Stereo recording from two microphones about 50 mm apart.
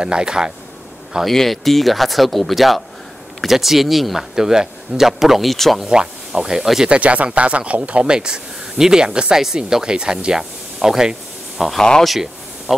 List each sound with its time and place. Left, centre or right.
0.0 s speech: centre
1.2 s speech: centre
5.9 s speech: centre
6.9 s speech: right; by 11.6 s centre
12.0 s a sound: centre